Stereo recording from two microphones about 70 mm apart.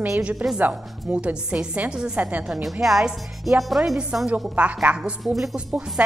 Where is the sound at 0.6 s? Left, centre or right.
Centre.